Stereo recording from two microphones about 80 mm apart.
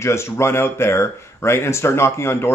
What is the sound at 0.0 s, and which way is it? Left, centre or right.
Speech, left.